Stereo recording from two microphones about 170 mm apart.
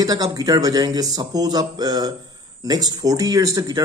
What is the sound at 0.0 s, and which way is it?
Speech, 20° right (ahead or behind).